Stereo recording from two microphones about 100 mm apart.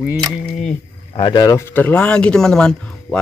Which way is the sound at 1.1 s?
55° left (ahead or behind).